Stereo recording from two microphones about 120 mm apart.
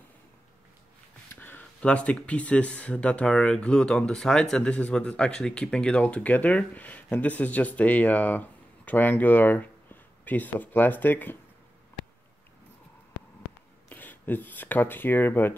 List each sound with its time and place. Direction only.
1.3 s speech: 15° left (ahead or behind)
13.8 s speech: 15° left (ahead or behind)